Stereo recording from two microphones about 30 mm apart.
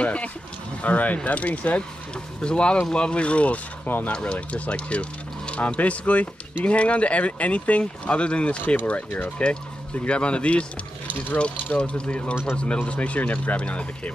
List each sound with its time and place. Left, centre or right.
0.0 s speech: left
0.8 s speech: left
2.4 s speech: left
3.8 s speech: left
4.1 s speech: left
11.7 s speech: left
13.6 s speech: left